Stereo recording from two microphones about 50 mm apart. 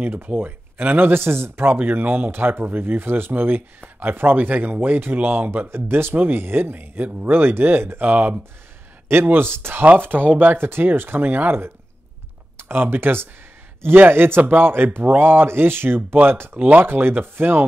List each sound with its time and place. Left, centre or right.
0.0 s speech: right
8.0 s speech: right
9.1 s speech: right